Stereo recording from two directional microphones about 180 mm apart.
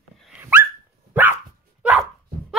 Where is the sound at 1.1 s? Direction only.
10° right (ahead or behind).